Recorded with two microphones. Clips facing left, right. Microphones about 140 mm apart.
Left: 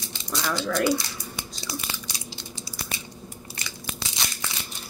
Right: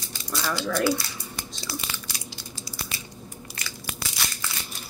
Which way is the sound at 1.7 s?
20° left (ahead or behind).